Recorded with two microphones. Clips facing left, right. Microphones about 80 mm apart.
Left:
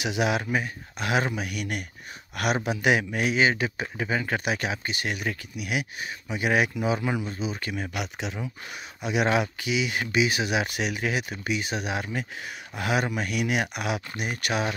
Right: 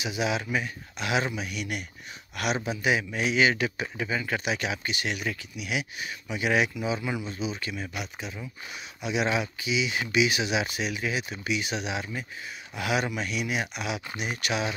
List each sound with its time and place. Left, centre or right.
0.0 s speech: left
0.4 s speech: left
3.3 s speech: left
9.0 s speech: left
11.4 s speech: left